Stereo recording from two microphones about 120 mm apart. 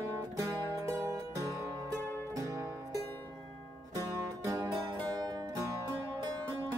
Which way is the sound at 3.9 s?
25° right (ahead or behind).